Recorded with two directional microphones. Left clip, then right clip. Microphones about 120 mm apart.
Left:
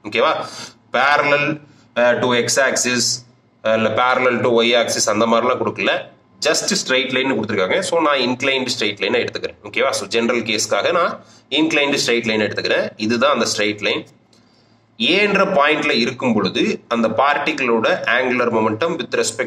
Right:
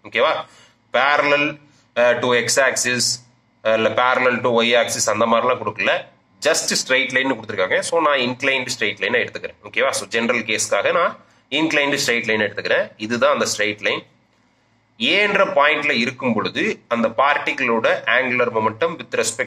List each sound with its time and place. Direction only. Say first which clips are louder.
0.0 s speech: left 1 dB; 50° left (ahead or behind)